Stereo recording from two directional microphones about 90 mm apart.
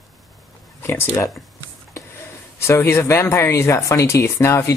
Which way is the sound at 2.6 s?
30° left (ahead or behind).